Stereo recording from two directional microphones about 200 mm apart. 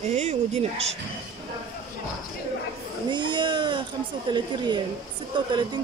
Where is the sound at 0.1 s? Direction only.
35° right (ahead or behind).